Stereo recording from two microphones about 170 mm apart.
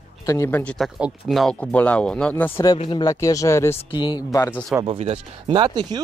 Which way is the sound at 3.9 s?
25° left (ahead or behind).